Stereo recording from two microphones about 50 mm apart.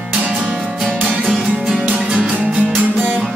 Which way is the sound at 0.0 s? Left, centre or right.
Centre.